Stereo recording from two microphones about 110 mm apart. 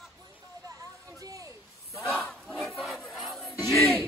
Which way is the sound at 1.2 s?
30° right (ahead or behind).